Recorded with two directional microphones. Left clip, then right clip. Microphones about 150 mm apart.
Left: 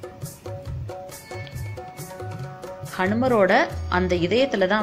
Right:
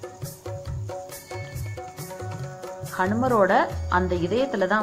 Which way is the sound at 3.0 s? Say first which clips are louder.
Left 1 dB; 30° left (ahead or behind).